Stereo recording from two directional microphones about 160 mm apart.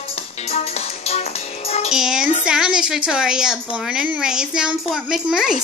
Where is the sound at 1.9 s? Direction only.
5° right (ahead or behind).